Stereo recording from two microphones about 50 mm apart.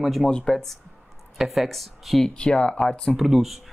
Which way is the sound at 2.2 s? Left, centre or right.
Centre.